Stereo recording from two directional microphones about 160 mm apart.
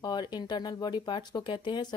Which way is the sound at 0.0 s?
25° left (ahead or behind).